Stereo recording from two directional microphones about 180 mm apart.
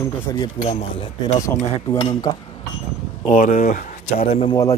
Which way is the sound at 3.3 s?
50° left (ahead or behind).